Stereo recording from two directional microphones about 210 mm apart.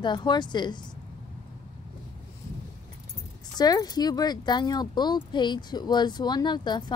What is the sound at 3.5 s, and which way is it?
A woman's voice, 20° left (ahead or behind).